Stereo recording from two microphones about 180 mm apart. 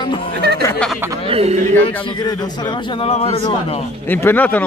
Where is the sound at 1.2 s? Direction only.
35° right (ahead or behind).